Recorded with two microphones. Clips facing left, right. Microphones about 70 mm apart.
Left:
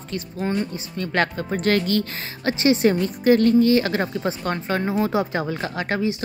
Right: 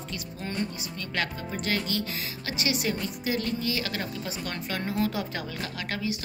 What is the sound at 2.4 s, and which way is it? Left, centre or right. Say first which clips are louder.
A woman's voice: left 13 dB; left.